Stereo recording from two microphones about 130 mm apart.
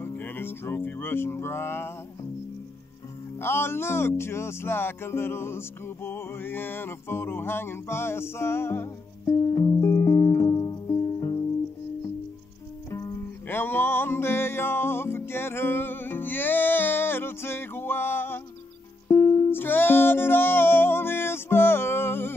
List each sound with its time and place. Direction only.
0.0 s music: 15° left (ahead or behind)
3.3 s speech: 20° left (ahead or behind)
12.9 s music: 25° left (ahead or behind)
13.5 s music: 15° left (ahead or behind)